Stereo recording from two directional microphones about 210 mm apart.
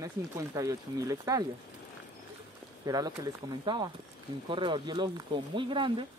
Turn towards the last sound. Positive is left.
turn(degrees=-25)  # may be behind; listen again after turning